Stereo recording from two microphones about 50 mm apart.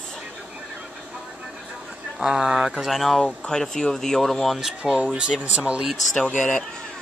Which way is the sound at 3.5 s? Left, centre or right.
Centre.